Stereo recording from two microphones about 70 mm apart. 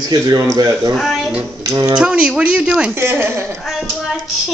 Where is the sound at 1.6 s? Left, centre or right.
Right.